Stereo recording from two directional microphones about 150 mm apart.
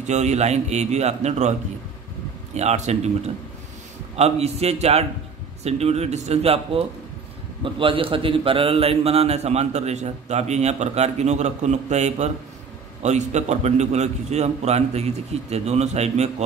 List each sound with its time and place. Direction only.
0.0 s a man's voice: 50° right (ahead or behind)
2.5 s a man's voice: 50° right (ahead or behind)